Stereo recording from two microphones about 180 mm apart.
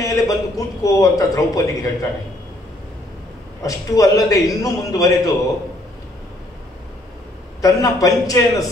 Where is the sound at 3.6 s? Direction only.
20° left (ahead or behind).